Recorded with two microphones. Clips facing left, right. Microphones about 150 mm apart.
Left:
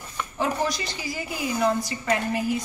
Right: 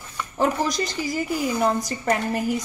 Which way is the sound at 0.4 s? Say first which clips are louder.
Right 4 dB; 45° right (ahead or behind).